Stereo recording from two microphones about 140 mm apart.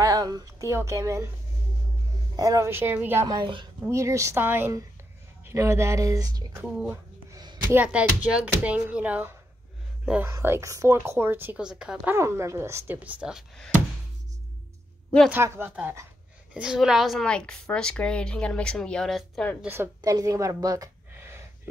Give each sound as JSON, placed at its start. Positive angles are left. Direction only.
{"t": 0.0, "sound": "speech", "side_deg": -25}
{"t": 2.3, "sound": "a woman's voice", "side_deg": -25}
{"t": 3.3, "sound": "speech", "side_deg": -30}
{"t": 6.5, "sound": "a woman's voice", "side_deg": -5}
{"t": 12.2, "sound": "a woman's voice", "side_deg": -20}
{"t": 15.2, "sound": "a woman's voice", "side_deg": -15}
{"t": 16.5, "sound": "a woman's voice", "side_deg": -5}
{"t": 19.6, "sound": "a woman's voice", "side_deg": -15}
{"t": 20.0, "sound": "a sound", "side_deg": -25}